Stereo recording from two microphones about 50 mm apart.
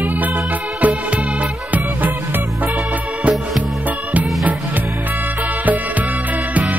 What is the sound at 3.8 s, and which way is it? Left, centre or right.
Music, right.